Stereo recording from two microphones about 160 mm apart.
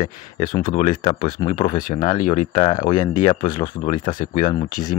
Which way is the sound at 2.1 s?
50° left (ahead or behind).